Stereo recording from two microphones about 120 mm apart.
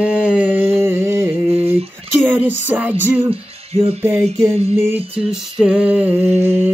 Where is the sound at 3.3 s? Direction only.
50° right (ahead or behind).